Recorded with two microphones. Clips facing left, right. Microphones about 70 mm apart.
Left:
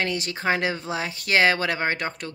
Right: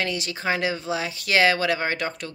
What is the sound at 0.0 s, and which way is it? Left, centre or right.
Speech, left.